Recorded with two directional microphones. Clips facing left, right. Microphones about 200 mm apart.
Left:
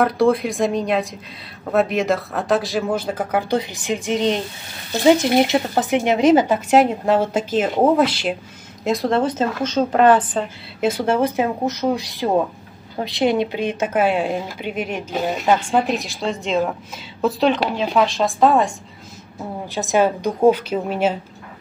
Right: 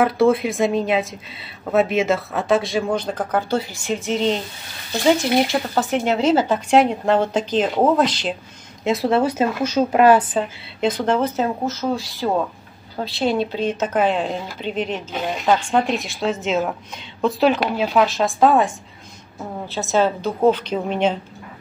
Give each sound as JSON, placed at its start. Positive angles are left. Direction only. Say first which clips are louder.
{"t": 0.0, "sound": "a woman's voice", "louder": "even", "side_deg": 0}
{"t": 5.5, "sound": "a woman's voice", "louder": "left 2 dB", "side_deg": 15}
{"t": 6.7, "sound": "a woman's voice", "louder": "even", "side_deg": 5}
{"t": 8.8, "sound": "a woman's voice", "louder": "right 1 dB", "side_deg": -5}
{"t": 10.8, "sound": "a woman's voice", "louder": "left 1 dB", "side_deg": 10}
{"t": 19.7, "sound": "a woman's voice", "louder": "left 1 dB", "side_deg": 15}